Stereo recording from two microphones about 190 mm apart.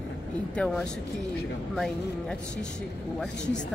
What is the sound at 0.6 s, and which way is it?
Speech, 5° left (ahead or behind).